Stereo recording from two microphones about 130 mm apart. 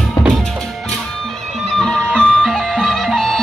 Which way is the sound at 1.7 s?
5° left (ahead or behind).